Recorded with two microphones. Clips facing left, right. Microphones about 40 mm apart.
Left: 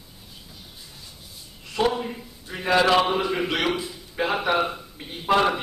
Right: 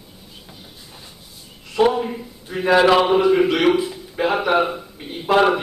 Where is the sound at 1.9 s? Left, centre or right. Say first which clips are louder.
Right 6 dB; centre.